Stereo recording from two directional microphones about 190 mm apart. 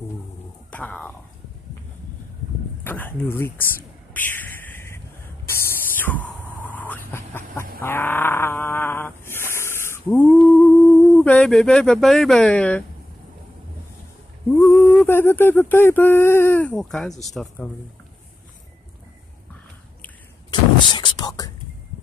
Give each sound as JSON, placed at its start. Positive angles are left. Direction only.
{"t": 0.7, "sound": "speech", "side_deg": 5}
{"t": 2.8, "sound": "speech", "side_deg": 10}
{"t": 4.1, "sound": "a sound", "side_deg": 10}
{"t": 9.5, "sound": "hiss", "side_deg": 15}
{"t": 10.3, "sound": "speech", "side_deg": 0}
{"t": 14.6, "sound": "a sound", "side_deg": 10}
{"t": 15.0, "sound": "speech", "side_deg": 10}
{"t": 20.9, "sound": "whispering", "side_deg": 25}